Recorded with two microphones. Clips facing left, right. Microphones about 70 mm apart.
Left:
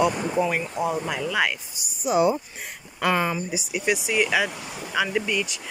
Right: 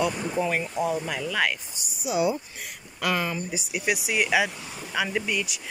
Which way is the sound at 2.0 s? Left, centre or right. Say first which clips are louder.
Left 4 dB; left.